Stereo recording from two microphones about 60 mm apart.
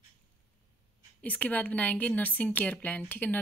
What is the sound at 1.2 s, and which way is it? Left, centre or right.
Speech, left.